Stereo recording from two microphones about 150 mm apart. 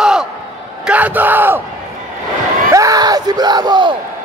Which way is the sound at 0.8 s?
10° right (ahead or behind).